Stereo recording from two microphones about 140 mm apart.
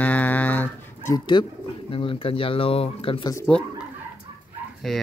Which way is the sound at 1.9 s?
40° left (ahead or behind).